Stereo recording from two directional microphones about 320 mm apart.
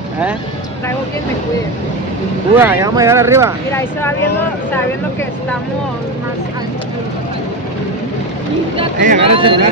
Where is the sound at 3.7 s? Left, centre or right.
Centre.